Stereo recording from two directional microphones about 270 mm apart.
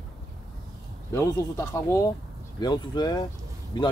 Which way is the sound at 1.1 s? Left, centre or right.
Centre.